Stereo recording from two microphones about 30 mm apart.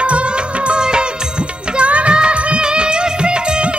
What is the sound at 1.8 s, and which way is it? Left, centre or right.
Music, right.